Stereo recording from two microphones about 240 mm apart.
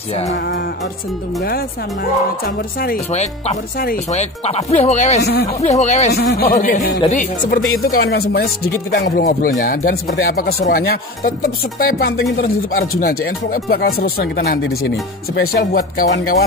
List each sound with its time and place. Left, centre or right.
2.4 s speech: left
5.2 s speech: left
5.6 s speech: left
6.1 s speech: left